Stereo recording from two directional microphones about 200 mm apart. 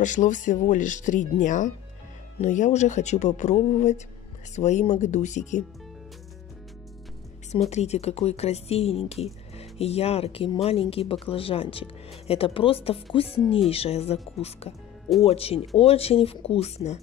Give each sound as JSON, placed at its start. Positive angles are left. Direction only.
{"t": 0.0, "sound": "speech", "side_deg": 40}
{"t": 7.7, "sound": "speech", "side_deg": 35}